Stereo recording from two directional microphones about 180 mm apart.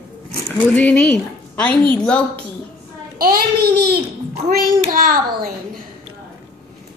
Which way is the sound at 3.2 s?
55° right (ahead or behind).